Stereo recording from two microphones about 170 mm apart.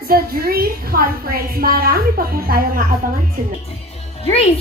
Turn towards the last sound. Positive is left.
turn(degrees=35)  # may be behind; listen again after turning